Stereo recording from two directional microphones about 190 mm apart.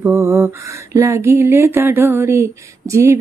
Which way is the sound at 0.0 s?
15° right (ahead or behind).